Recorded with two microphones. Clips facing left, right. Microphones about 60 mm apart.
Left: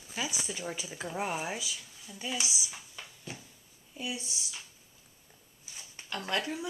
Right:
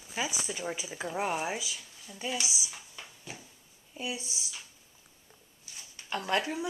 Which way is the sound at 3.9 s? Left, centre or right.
Centre.